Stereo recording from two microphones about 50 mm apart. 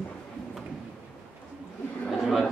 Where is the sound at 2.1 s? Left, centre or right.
Centre.